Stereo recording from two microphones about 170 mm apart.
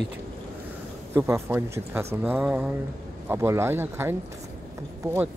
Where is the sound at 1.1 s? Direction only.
15° right (ahead or behind).